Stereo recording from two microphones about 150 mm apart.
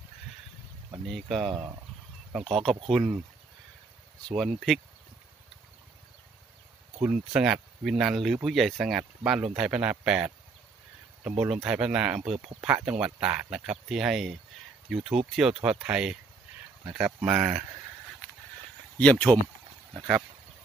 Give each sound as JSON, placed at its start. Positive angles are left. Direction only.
{"t": 1.0, "sound": "speech", "side_deg": 0}
{"t": 4.4, "sound": "speech", "side_deg": 0}
{"t": 7.0, "sound": "speech", "side_deg": -5}
{"t": 18.9, "sound": "speech", "side_deg": 10}